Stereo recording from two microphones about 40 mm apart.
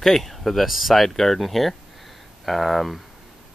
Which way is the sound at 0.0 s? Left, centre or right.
Centre.